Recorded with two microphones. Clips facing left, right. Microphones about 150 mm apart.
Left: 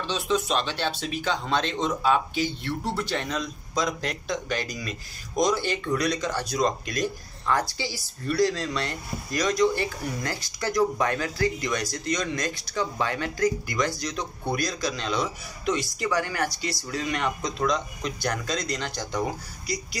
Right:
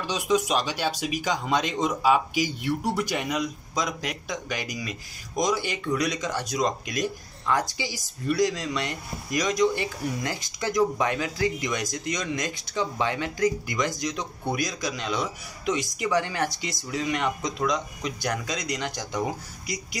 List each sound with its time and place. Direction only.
0.0 s speech: 10° right (ahead or behind)